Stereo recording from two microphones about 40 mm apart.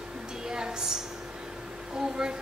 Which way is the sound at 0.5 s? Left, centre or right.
Centre.